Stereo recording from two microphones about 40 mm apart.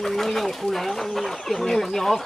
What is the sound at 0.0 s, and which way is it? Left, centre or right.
Speech, centre.